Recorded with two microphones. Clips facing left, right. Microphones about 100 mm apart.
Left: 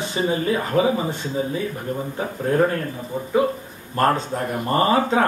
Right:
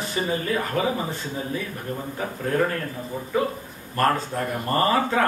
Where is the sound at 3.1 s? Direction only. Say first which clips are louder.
Left 5 dB; 25° left (ahead or behind).